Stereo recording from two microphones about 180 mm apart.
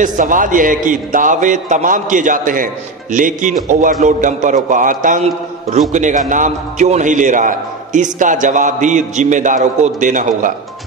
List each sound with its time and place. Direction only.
0.0 s a man's voice: 45° right (ahead or behind)